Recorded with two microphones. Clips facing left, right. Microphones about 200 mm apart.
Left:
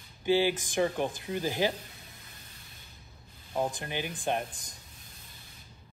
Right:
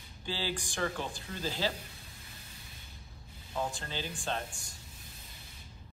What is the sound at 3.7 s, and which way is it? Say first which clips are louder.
Speech: left 4 dB; 15° left (ahead or behind).